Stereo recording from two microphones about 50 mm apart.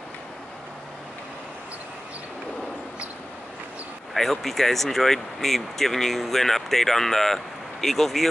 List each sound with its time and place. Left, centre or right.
4.1 s speech: centre